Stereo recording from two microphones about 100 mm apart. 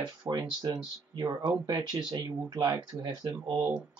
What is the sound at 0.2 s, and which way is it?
Speech, 35° right (ahead or behind).